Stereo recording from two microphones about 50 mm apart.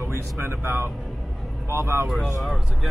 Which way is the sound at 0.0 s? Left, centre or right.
Right.